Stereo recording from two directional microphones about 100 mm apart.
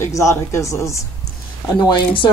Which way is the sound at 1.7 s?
50° left (ahead or behind).